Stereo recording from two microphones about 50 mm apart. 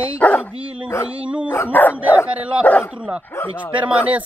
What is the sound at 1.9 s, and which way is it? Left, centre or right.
Speech, right.